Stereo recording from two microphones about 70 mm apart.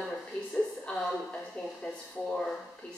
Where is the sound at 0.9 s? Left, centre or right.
Centre.